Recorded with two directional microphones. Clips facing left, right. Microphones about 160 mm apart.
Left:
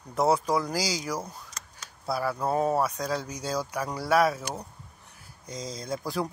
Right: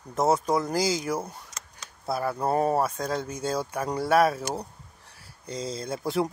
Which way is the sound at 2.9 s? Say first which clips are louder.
Right 1 dB; 55° right (ahead or behind).